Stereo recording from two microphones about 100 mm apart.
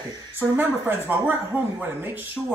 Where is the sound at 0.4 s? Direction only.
25° right (ahead or behind).